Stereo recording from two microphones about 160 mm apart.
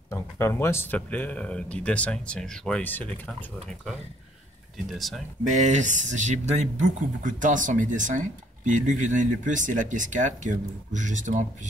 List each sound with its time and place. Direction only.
0.1 s speech: 15° left (ahead or behind)
4.9 s speech: centre (ahead or behind)
5.5 s speech: 50° right (ahead or behind)